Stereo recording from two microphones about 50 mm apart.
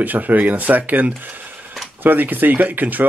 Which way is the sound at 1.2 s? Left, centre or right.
Right.